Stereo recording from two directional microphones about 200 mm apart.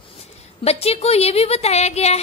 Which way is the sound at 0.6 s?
30° left (ahead or behind).